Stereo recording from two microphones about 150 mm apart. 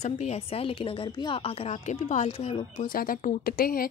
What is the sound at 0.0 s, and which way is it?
A woman's voice, 45° left (ahead or behind).